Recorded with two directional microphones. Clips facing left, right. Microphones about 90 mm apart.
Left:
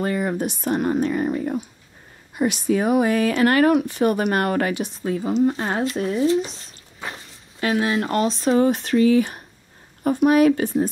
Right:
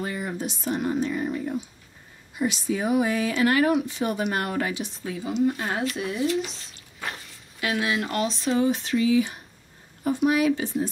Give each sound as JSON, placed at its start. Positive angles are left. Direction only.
{"t": 0.0, "sound": "speech", "side_deg": 50}
{"t": 5.0, "sound": "speech", "side_deg": 40}